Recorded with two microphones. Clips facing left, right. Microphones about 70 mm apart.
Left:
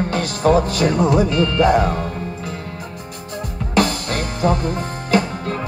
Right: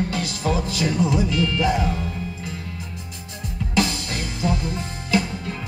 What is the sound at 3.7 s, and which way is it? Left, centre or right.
Music, left.